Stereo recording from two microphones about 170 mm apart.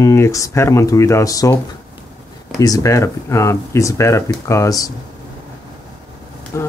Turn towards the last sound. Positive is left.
turn(degrees=15)  # may be behind; listen again after turning